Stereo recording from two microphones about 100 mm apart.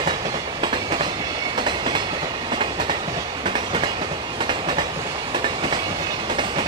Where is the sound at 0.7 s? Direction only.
50° right (ahead or behind).